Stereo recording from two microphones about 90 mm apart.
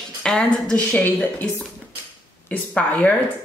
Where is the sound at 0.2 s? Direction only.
10° left (ahead or behind).